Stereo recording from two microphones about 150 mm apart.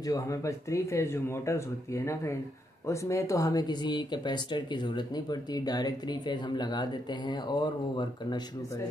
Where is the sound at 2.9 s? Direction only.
20° left (ahead or behind).